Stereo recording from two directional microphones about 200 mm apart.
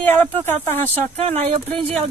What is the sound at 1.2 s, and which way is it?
Speech, 30° right (ahead or behind).